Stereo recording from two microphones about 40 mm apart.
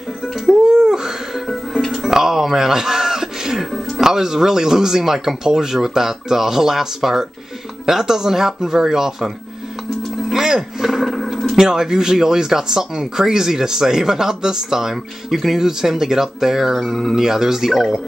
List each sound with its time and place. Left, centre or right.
0.7 s a sound: centre
4.0 s speech: centre
10.3 s roar: centre
11.2 s speech: centre